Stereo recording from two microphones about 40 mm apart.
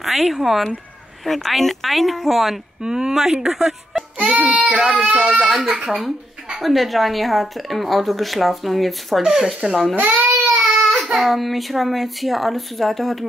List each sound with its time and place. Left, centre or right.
0.0 s speech: centre
2.8 s speech: centre
4.2 s speech: right
4.6 s a child's voice: centre
9.2 s speech: centre
9.7 s speech: centre
9.9 s speech: right
11.1 s speech: centre